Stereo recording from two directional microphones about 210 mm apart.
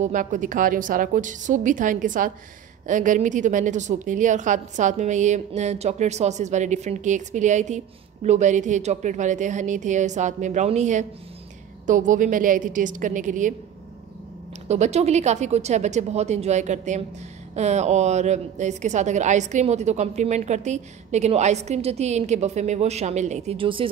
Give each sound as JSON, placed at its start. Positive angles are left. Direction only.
{"t": 0.0, "sound": "a woman's voice", "side_deg": -35}
{"t": 14.7, "sound": "a woman's voice", "side_deg": -30}